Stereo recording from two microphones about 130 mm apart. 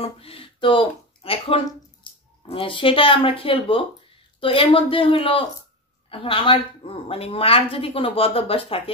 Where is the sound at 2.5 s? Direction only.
40° left (ahead or behind).